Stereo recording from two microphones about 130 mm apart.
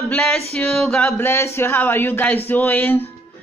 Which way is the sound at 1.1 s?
20° left (ahead or behind).